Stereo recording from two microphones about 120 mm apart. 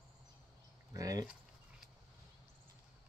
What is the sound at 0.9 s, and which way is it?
Speech, 30° right (ahead or behind).